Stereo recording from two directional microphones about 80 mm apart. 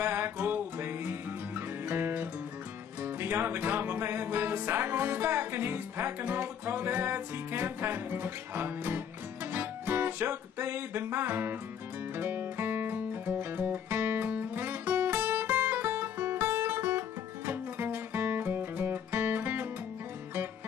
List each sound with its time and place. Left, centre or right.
0.0 s music: right